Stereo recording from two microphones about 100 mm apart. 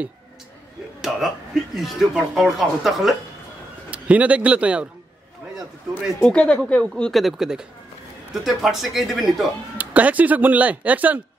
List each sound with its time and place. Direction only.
1.0 s speech: 5° right (ahead or behind)
3.9 s speech: 15° right (ahead or behind)
6.2 s speech: 10° left (ahead or behind)
9.8 s speech: 15° right (ahead or behind)